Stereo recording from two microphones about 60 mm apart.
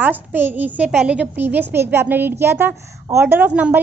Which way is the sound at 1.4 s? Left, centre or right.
Right.